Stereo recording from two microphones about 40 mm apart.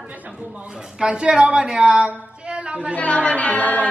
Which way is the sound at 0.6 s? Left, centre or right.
Centre.